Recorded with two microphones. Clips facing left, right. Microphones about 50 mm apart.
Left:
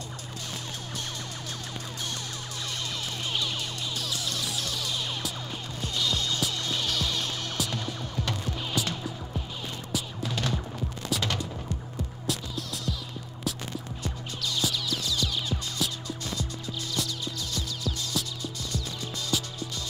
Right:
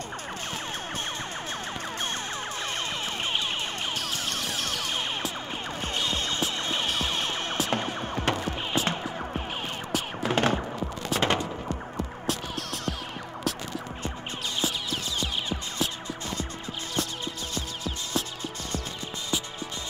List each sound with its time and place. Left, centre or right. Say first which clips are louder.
2.6 s music: right 1 dB; right
12.3 s music: right 1 dB; right
14.0 s music: right 1 dB; right
16.9 s music: right 2 dB; right